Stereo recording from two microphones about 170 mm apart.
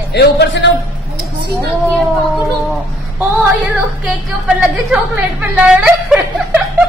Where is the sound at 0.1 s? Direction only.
80° left.